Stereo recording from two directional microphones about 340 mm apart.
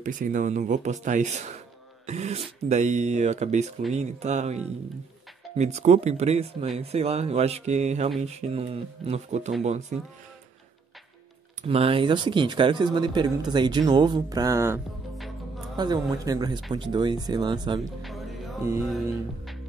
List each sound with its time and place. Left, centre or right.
0.0 s speech: right
5.6 s speech: centre
11.6 s speech: centre
15.7 s speech: centre